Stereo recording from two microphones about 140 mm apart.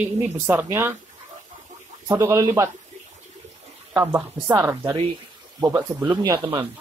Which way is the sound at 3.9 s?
15° right (ahead or behind).